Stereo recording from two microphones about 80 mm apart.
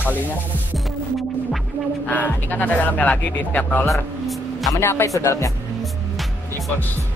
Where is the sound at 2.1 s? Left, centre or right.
Left.